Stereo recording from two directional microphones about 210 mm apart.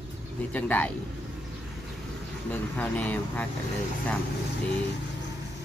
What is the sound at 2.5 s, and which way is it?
Speech, 5° left (ahead or behind).